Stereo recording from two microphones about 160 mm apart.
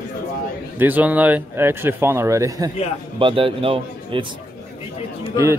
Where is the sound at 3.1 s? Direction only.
35° right (ahead or behind).